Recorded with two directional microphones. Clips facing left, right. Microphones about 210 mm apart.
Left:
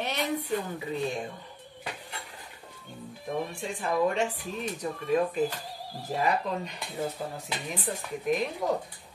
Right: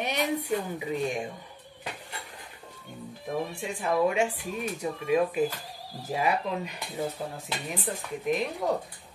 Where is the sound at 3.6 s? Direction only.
10° right (ahead or behind).